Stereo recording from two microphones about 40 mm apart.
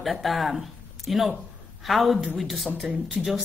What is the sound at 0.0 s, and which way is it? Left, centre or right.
Speech, centre.